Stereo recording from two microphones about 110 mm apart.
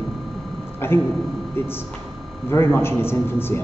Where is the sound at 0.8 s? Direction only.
20° left (ahead or behind).